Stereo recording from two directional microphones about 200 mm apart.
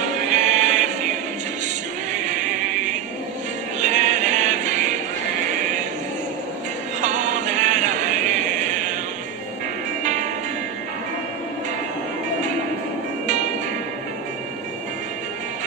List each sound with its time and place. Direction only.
0.3 s choir: 40° right (ahead or behind)
2.1 s music: 40° right (ahead or behind)
7.0 s music: 40° right (ahead or behind)
10.0 s music: 40° right (ahead or behind)